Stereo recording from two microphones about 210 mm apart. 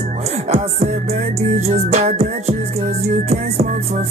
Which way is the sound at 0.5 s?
30° right (ahead or behind).